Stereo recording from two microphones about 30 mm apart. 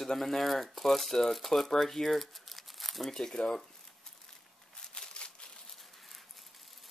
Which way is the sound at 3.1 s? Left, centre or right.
Centre.